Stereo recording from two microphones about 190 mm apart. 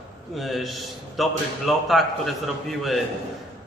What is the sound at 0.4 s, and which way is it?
A man's voice, centre (ahead or behind).